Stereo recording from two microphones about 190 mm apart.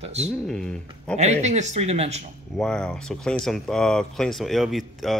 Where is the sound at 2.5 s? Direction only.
5° left (ahead or behind).